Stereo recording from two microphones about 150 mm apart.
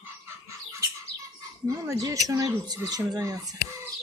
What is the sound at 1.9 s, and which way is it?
Speech, 20° right (ahead or behind).